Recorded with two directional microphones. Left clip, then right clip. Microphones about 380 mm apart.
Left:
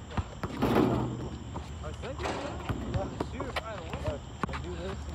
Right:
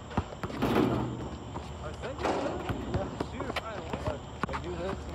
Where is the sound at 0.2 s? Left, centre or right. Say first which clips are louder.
Right 4 dB; right.